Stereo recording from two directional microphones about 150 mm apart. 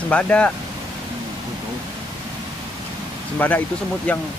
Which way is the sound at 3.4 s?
10° left (ahead or behind).